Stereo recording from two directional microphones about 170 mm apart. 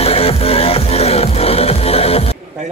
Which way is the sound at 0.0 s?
35° left (ahead or behind).